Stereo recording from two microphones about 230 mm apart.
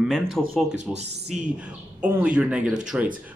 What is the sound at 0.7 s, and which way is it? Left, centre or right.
Speech, right.